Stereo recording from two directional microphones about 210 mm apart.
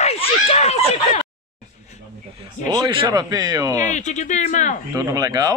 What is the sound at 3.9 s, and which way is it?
Speech, 35° left (ahead or behind).